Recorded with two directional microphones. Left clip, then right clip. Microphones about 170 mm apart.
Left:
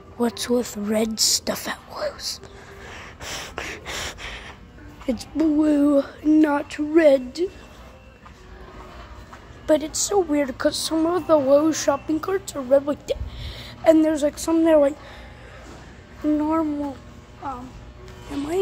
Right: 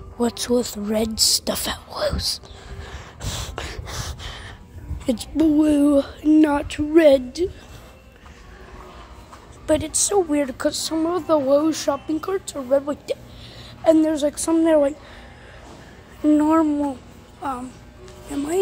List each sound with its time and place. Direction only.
0.2 s speech: 5° right (ahead or behind)
3.5 s gasp: 5° right (ahead or behind)
5.0 s music: 15° right (ahead or behind)
9.7 s a woman's voice: 5° right (ahead or behind)
12.6 s a sound: centre (ahead or behind)
13.8 s music: 10° right (ahead or behind)
16.3 s babbling: 50° right (ahead or behind)